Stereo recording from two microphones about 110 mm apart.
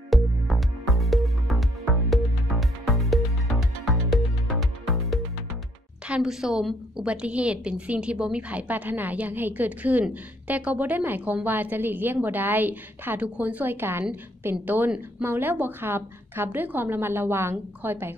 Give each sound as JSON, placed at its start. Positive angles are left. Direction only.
{"t": 0.1, "sound": "music", "side_deg": 0}
{"t": 2.8, "sound": "music", "side_deg": 0}
{"t": 6.0, "sound": "a woman's voice", "side_deg": -5}